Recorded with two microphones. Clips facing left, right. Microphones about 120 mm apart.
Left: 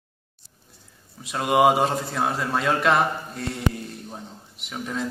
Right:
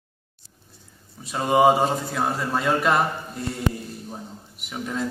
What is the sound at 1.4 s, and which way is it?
A man's voice, centre (ahead or behind).